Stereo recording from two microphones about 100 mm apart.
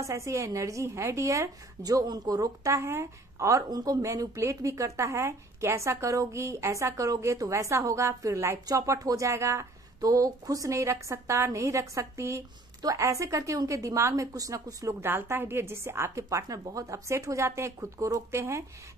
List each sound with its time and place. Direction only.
0.0 s speech: 30° right (ahead or behind)
15.0 s a woman's voice: 25° right (ahead or behind)